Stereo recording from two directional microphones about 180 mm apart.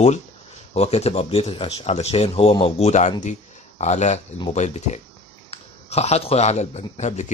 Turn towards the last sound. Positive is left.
turn(degrees=40)  # may be behind; listen again after turning